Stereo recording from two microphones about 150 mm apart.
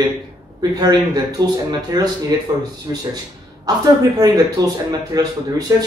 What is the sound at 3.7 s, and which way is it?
Speech, 25° right (ahead or behind).